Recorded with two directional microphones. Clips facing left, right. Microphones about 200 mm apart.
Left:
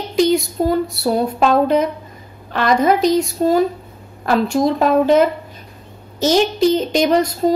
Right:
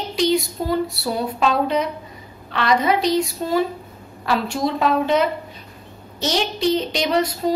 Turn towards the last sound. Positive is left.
turn(degrees=45)  # may be behind; listen again after turning